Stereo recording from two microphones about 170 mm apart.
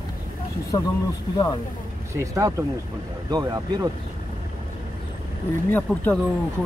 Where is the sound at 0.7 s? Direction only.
25° left (ahead or behind).